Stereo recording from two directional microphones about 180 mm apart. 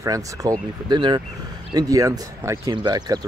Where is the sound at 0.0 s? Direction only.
20° right (ahead or behind).